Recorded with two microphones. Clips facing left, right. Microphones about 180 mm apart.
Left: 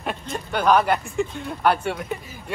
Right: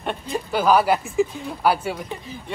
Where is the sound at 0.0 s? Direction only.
Centre (ahead or behind).